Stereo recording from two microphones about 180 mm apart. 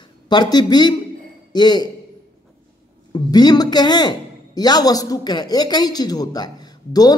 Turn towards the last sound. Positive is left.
turn(degrees=20)  # may be behind; listen again after turning